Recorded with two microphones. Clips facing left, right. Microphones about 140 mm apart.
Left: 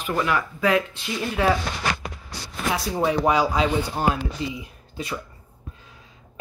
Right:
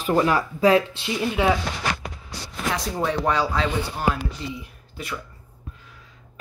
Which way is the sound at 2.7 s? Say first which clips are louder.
Left 3 dB; 10° left (ahead or behind).